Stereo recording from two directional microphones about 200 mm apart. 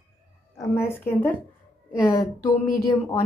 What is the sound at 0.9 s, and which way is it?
Speech, 10° left (ahead or behind).